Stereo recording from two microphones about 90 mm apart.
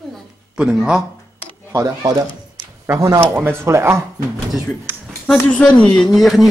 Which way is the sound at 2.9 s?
30° right (ahead or behind).